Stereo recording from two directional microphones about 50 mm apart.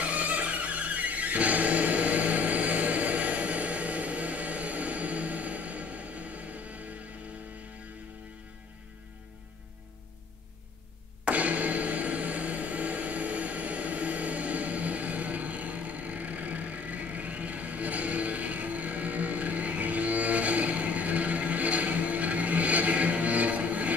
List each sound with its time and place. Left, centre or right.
0.0 s music: right
11.2 s music: right